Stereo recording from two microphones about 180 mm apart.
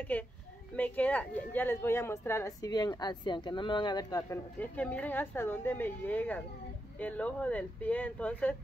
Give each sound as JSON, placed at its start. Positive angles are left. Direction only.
{"t": 0.1, "sound": "a woman's voice", "side_deg": 10}
{"t": 4.6, "sound": "a woman's voice", "side_deg": 10}